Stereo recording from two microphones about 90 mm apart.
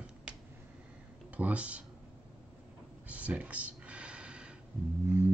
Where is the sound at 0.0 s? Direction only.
10° right (ahead or behind).